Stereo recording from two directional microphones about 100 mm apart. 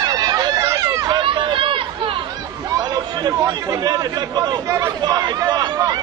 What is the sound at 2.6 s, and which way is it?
Chatter, 40° right (ahead or behind).